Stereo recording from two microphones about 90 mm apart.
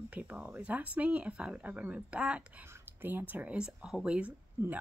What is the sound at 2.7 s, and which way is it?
Speech, 25° right (ahead or behind).